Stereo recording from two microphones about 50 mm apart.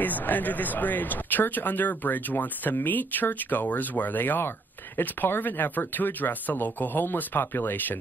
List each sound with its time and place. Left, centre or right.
0.0 s speech: left